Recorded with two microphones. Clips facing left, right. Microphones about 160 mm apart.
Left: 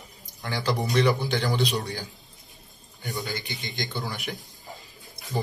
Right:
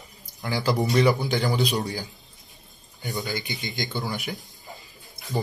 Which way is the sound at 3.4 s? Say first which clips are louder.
Right 2 dB; centre (ahead or behind).